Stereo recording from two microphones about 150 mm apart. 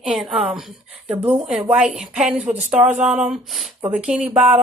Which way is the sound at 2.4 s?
55° right (ahead or behind).